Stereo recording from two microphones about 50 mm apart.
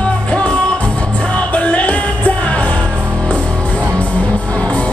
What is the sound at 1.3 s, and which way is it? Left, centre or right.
Music, left.